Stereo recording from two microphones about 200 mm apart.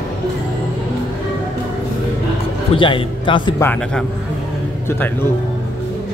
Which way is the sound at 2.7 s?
25° left (ahead or behind).